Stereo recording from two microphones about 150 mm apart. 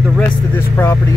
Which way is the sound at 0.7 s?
15° left (ahead or behind).